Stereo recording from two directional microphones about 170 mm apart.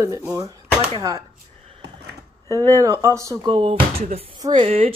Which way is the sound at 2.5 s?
20° right (ahead or behind).